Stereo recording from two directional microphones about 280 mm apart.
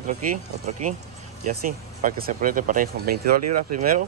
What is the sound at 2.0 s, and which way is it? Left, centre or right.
Speech, right.